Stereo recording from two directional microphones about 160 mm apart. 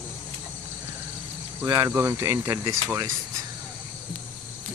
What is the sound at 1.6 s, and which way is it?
Speech, 15° right (ahead or behind).